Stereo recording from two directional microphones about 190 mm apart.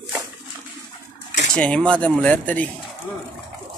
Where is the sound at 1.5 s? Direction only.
5° left (ahead or behind).